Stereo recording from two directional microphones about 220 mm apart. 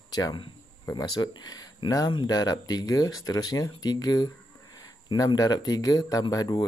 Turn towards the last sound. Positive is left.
turn(degrees=15)  # may be behind; listen again after turning